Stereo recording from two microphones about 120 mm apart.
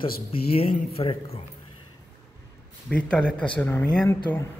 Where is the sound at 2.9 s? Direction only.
10° left (ahead or behind).